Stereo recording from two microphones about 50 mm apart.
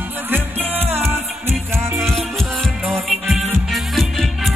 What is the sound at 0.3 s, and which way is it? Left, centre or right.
Music, right.